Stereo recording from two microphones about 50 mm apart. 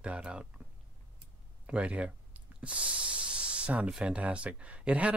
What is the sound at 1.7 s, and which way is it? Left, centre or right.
Hiss, right.